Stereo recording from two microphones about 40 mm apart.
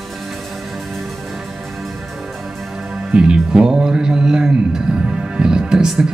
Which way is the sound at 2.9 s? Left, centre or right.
Right.